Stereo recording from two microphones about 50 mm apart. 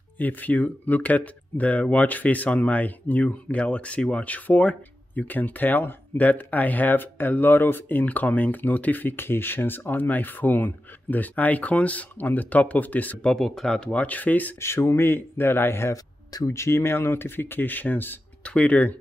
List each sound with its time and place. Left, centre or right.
0.2 s speech: left
9.1 s speech: left
13.2 s speech: centre
13.9 s speech: left
14.6 s speech: left
16.4 s speech: left
18.4 s speech: left